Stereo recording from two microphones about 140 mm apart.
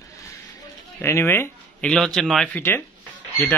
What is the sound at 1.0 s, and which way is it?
Speech, 20° left (ahead or behind).